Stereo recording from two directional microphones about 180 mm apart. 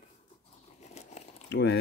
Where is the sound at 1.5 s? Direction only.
70° left (ahead or behind).